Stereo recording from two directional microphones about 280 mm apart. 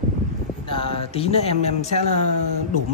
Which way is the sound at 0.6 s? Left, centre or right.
Centre.